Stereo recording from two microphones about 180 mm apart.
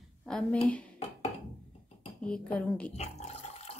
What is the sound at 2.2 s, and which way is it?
Female singing, 5° left (ahead or behind).